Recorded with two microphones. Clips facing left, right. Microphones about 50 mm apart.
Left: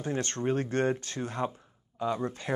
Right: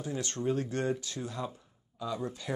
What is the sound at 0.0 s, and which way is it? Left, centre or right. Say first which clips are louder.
Speech: left 3 dB; left.